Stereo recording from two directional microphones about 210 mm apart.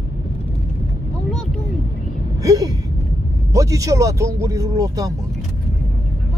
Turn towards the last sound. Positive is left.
turn(degrees=-15)  # may be behind; listen again after turning